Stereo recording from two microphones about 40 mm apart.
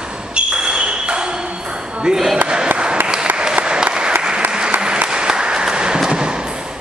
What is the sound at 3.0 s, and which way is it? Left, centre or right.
Applause, right.